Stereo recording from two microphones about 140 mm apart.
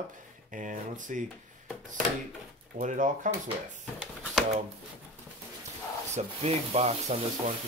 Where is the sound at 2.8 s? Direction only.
65° right (ahead or behind).